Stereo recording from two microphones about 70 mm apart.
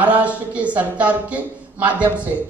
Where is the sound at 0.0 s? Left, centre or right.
Centre.